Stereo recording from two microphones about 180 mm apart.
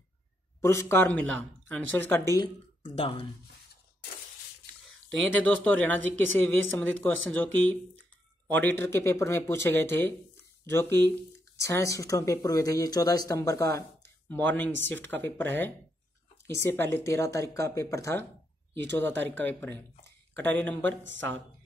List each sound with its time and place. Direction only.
0.6 s speech: 15° left (ahead or behind); by 3.3 s 30° left (ahead or behind)
5.4 s speech: 5° left (ahead or behind)
21.0 s a woman's voice: 90° right